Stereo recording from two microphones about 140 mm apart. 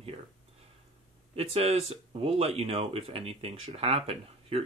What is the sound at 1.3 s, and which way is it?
Speech, 45° right (ahead or behind).